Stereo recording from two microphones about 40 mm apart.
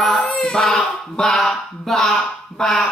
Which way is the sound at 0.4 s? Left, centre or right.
Centre.